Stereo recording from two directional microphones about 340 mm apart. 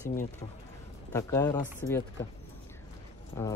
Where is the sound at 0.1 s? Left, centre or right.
Left.